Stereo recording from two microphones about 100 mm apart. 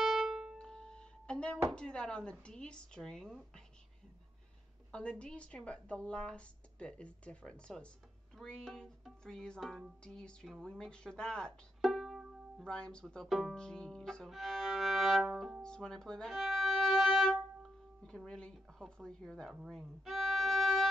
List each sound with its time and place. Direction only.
0.0 s music: centre (ahead or behind)
1.7 s a woman's voice: 10° left (ahead or behind)
4.9 s a woman's voice: 10° left (ahead or behind)
12.6 s speech: 10° left (ahead or behind)
19.5 s violin: 5° right (ahead or behind)